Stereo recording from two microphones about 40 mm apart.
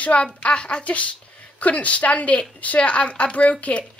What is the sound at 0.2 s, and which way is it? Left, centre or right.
Speech, left.